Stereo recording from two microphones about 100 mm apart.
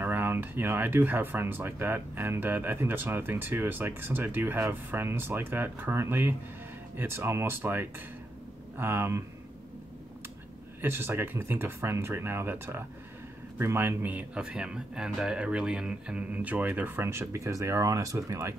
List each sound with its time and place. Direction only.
0.0 s speech: 20° right (ahead or behind)
10.8 s speech: 25° right (ahead or behind)